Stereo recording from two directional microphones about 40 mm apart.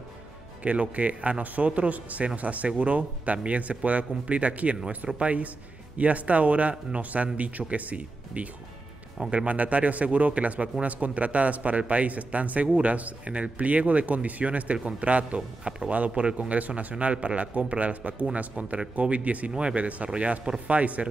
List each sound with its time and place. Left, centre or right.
0.7 s speech: right
20.4 s a man's voice: right
20.7 s speech: right